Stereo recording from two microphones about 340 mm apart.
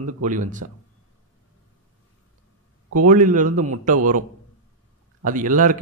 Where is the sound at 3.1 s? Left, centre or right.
Right.